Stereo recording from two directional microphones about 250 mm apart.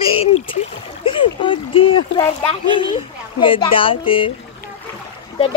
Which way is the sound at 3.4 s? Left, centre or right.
Left.